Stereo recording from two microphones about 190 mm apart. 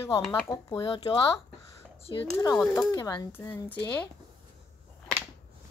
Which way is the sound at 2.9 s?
20° left (ahead or behind).